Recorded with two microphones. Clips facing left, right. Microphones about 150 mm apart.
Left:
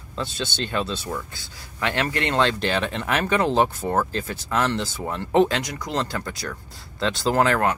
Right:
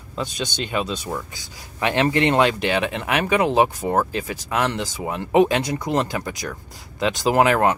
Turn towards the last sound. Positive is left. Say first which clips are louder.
# right 3 dB
turn(degrees=-15)  # may be behind; listen again after turning